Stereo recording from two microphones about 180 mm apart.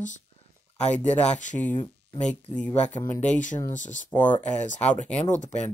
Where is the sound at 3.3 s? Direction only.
45° left (ahead or behind).